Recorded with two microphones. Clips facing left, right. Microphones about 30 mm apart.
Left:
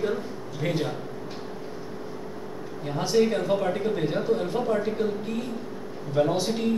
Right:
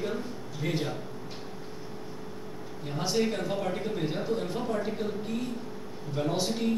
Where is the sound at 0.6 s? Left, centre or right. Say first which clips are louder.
Left 4 dB; left.